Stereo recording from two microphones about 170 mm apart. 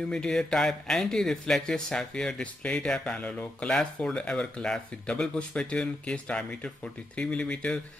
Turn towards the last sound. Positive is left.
turn(degrees=5)  # may be behind; listen again after turning